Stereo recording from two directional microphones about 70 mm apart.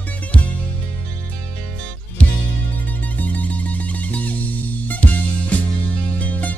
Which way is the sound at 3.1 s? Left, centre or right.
Left.